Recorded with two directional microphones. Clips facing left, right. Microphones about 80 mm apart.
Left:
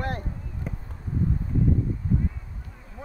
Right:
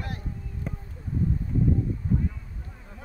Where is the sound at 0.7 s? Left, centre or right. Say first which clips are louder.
Even; centre.